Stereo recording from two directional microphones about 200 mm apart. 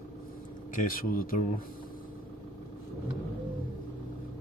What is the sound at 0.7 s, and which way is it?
Speech, 45° left (ahead or behind).